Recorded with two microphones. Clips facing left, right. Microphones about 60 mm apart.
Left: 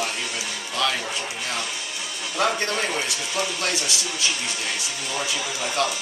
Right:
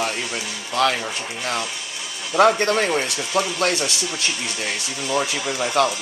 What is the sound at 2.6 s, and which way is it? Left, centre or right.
Speech, right.